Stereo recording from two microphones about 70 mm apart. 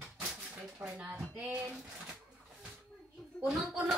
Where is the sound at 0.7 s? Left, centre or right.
Right.